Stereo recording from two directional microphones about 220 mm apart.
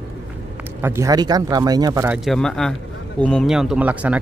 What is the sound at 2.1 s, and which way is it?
Speech, centre (ahead or behind).